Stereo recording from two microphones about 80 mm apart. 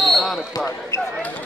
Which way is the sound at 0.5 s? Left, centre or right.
Left.